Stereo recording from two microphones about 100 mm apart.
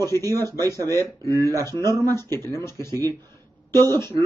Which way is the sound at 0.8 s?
30° left (ahead or behind).